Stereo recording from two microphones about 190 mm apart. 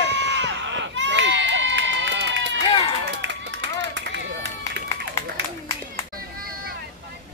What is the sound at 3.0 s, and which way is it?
Clapping, 65° right (ahead or behind).